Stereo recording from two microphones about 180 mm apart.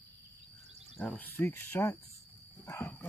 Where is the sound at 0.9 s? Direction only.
10° left (ahead or behind).